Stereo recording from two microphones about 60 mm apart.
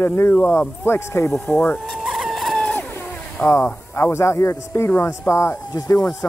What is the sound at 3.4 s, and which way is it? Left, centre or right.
Speech, centre.